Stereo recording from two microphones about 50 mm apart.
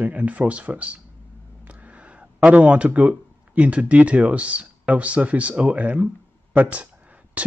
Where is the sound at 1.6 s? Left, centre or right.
Right.